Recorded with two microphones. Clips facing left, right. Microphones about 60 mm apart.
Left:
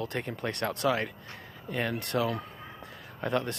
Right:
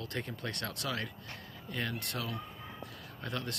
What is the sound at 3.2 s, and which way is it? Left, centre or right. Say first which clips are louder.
Speech: left 9 dB; left.